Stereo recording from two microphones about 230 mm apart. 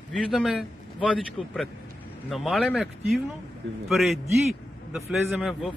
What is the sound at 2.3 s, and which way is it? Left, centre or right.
Speech, centre.